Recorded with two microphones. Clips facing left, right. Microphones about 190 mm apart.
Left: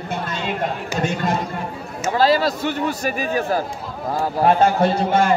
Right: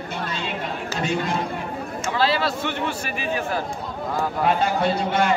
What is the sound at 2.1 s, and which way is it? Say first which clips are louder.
A man's voice: left 5 dB; 40° left (ahead or behind).